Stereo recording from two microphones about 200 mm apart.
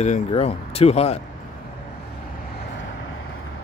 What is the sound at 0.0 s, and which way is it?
Speech, 30° left (ahead or behind).